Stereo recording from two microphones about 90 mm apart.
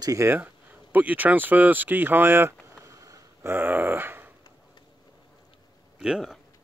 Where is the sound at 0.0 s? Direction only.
35° right (ahead or behind).